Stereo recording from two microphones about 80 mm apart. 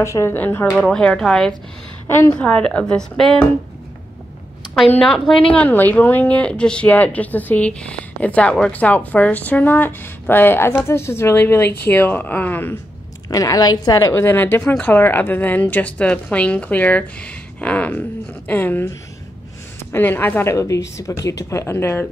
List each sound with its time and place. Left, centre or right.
0.0 s speech: left
0.7 s speech: centre
2.0 s a woman's voice: left
2.3 s speech: centre
5.0 s speech: centre
5.5 s speech: centre
13.3 s a woman's voice: left
14.1 s speech: left
20.5 s speech: left